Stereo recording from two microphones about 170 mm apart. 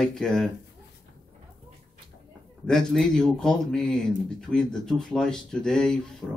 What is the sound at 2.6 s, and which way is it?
Speech, 5° left (ahead or behind).